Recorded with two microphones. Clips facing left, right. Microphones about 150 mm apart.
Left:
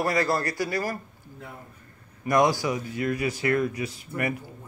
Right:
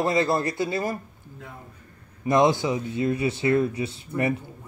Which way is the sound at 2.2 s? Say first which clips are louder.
Right 2 dB; 25° right (ahead or behind).